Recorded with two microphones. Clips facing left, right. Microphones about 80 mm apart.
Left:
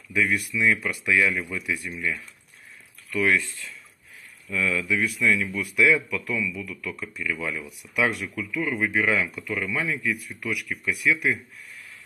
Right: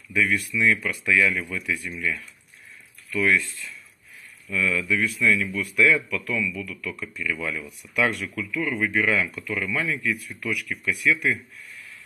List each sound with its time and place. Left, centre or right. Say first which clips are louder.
0.1 s speech: right 1 dB; centre
6.7 s speech: even; left
7.6 s speech: right 1 dB; centre